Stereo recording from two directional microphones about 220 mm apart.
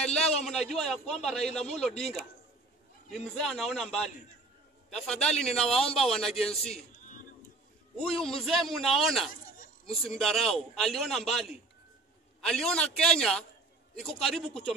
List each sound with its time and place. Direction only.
0.5 s a man's voice: centre (ahead or behind)
3.3 s a man's voice: centre (ahead or behind)
6.7 s a sound: 35° left (ahead or behind)
8.0 s a man's voice: centre (ahead or behind)
9.6 s a sound: 25° left (ahead or behind)
10.1 s a man's voice: centre (ahead or behind)